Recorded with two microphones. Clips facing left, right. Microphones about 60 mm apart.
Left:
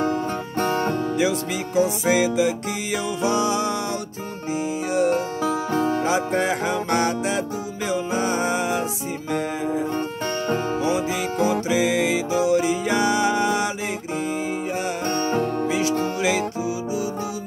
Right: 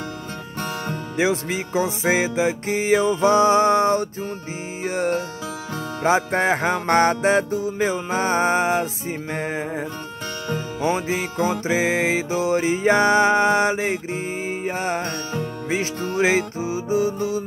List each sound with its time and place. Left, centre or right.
0.6 s music: left
1.1 s music: right
5.4 s music: left
6.0 s music: right
10.8 s music: right
15.6 s music: right